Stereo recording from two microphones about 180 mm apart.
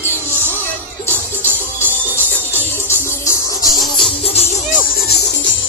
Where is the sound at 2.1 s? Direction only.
15° left (ahead or behind).